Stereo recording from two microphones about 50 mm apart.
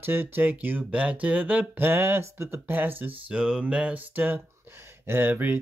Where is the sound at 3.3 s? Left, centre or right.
Right.